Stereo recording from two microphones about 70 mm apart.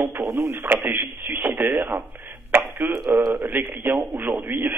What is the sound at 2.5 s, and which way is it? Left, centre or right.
Throat clearing, right.